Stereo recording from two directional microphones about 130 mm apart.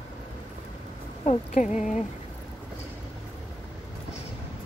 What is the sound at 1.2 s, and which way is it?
Speech, 55° left (ahead or behind).